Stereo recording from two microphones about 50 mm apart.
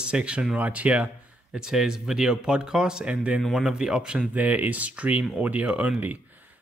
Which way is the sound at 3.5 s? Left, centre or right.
Centre.